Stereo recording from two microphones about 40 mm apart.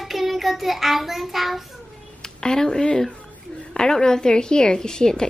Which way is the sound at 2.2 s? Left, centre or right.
Left.